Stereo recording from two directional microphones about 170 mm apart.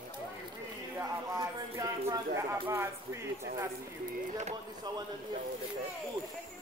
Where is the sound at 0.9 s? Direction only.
15° right (ahead or behind).